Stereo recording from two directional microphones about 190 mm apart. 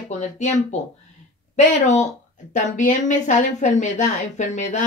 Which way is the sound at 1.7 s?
35° left (ahead or behind).